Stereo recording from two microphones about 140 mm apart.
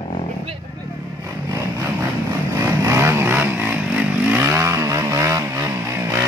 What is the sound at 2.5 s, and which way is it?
Vehicle, 20° right (ahead or behind).